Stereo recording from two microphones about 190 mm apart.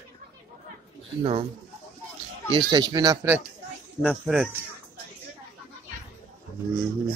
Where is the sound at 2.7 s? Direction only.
20° right (ahead or behind).